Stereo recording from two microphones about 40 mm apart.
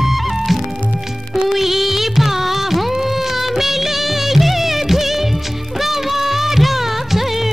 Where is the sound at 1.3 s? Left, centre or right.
Centre.